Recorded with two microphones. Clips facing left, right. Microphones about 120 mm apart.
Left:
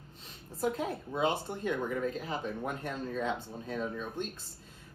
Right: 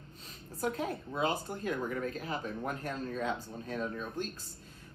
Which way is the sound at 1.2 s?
30° left (ahead or behind).